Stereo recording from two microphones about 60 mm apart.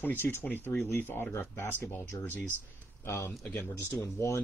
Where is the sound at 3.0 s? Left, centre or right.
Left.